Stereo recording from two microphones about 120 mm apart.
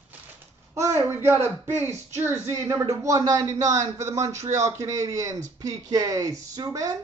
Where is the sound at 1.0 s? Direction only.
20° right (ahead or behind).